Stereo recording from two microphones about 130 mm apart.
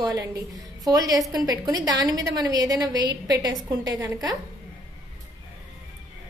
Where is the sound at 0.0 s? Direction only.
30° right (ahead or behind).